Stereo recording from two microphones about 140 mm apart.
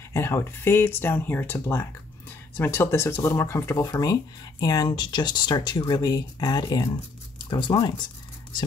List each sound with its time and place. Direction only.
0.1 s speech: 20° left (ahead or behind); by 7.9 s 35° left (ahead or behind)